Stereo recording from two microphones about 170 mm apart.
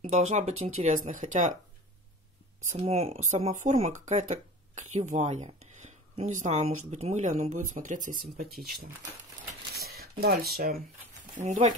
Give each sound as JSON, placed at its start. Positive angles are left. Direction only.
{"t": 0.0, "sound": "speech", "side_deg": -40}
{"t": 2.7, "sound": "speech", "side_deg": -40}
{"t": 8.5, "sound": "speech", "side_deg": 0}
{"t": 9.8, "sound": "a sound", "side_deg": -65}
{"t": 11.4, "sound": "speech", "side_deg": -45}